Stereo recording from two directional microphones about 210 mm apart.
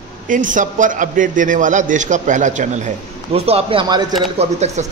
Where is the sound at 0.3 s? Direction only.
40° right (ahead or behind).